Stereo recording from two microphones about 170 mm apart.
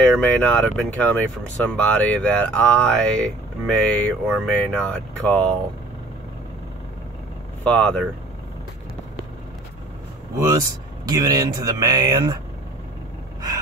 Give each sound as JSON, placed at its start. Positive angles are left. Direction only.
{"t": 0.0, "sound": "speech", "side_deg": 10}
{"t": 7.6, "sound": "speech", "side_deg": 5}
{"t": 11.1, "sound": "speech", "side_deg": -20}